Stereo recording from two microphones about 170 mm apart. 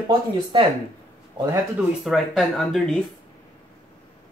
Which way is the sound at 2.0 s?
Centre (ahead or behind).